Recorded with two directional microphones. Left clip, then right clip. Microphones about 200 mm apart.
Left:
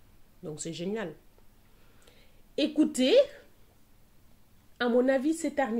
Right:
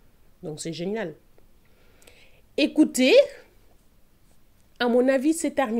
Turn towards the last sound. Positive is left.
turn(degrees=-35)  # may be behind; listen again after turning